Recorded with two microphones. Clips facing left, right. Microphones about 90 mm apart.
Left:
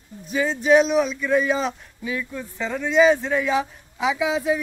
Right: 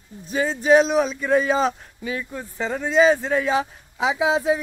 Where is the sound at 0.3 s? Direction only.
40° right (ahead or behind).